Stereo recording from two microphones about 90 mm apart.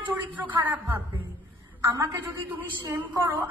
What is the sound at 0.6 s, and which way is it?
Speech, 20° right (ahead or behind).